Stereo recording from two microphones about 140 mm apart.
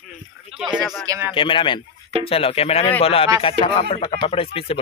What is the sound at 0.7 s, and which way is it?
Speech, 20° right (ahead or behind).